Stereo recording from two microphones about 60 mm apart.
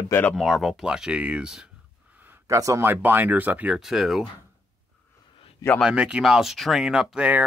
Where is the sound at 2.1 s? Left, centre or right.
Right.